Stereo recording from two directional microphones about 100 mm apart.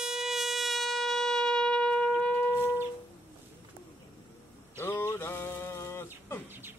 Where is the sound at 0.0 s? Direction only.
5° right (ahead or behind); by 2.7 s 15° left (ahead or behind).